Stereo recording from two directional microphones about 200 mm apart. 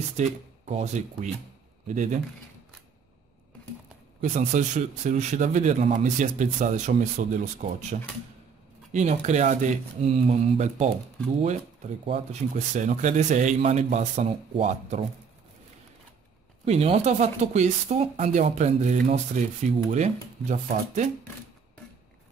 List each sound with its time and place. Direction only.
0.2 s a man's voice: 35° right (ahead or behind)
4.2 s a man's voice: 40° right (ahead or behind)
12.1 s a man's voice: 35° right (ahead or behind)
16.6 s a man's voice: 30° right (ahead or behind)